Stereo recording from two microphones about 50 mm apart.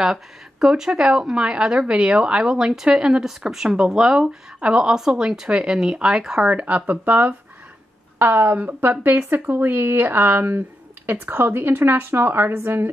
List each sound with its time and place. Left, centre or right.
0.0 s speech: centre
6.4 s a woman's voice: right